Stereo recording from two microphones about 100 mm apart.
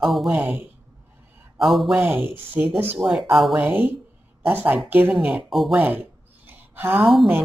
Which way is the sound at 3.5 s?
20° right (ahead or behind).